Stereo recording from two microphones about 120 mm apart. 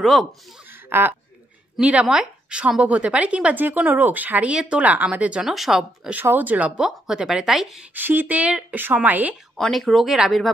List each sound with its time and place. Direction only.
0.0 s speech: centre (ahead or behind)
0.7 s a sound: 15° right (ahead or behind)
1.8 s speech: 10° right (ahead or behind)
6.1 s speech: 15° right (ahead or behind)
7.9 s speech: 15° right (ahead or behind)
9.6 s speech: centre (ahead or behind)